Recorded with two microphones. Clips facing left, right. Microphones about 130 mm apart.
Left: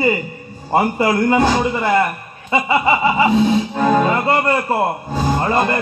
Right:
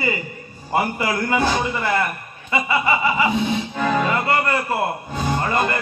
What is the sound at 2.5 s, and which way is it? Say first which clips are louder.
A man's voice: left 4 dB; 30° left (ahead or behind).